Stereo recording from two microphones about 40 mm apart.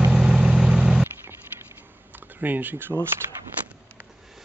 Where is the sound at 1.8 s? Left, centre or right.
Right.